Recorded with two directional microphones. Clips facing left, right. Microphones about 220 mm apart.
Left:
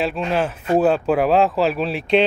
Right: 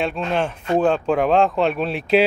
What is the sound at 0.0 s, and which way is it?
Speech, 5° left (ahead or behind).